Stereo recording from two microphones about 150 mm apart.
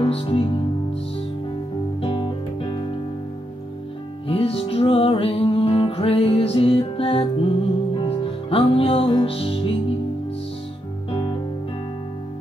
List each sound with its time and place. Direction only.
0.0 s music: 40° left (ahead or behind)
2.0 s music: 35° left (ahead or behind)
4.3 s music: 40° left (ahead or behind)